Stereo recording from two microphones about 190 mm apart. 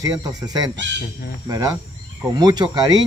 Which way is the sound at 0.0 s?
20° right (ahead or behind).